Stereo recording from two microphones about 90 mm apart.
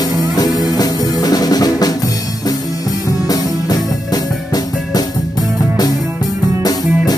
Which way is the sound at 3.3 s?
45° left (ahead or behind).